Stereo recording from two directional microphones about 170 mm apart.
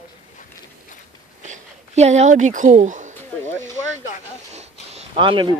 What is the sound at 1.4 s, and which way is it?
Speech, 40° right (ahead or behind).